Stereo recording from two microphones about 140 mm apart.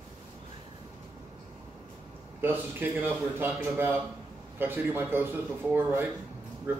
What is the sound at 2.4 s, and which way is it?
A man's voice, 15° right (ahead or behind).